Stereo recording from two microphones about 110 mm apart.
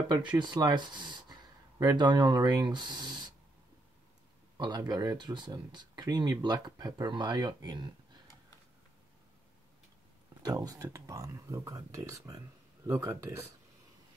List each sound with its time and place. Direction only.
0.4 s speech: 40° right (ahead or behind)
4.6 s speech: 40° right (ahead or behind)
10.4 s speech: 35° right (ahead or behind)